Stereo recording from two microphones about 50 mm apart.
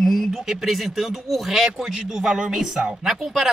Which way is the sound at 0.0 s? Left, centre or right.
Centre.